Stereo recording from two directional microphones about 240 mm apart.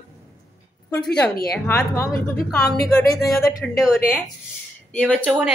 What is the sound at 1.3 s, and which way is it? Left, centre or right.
Speech, left.